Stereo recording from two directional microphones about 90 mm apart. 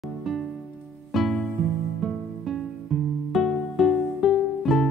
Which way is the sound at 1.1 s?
Centre (ahead or behind).